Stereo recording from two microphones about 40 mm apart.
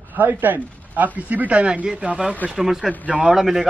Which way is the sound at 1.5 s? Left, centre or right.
Right.